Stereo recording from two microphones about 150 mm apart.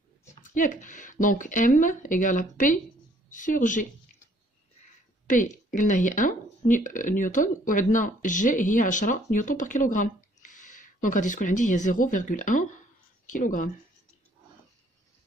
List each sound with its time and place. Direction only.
0.3 s speech: 55° left (ahead or behind)
5.2 s speech: 60° left (ahead or behind)